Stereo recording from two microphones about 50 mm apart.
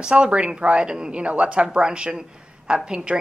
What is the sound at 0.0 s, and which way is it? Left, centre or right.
A woman's voice, right.